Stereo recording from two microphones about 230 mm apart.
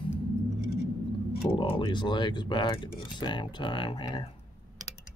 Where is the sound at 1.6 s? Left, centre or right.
Left.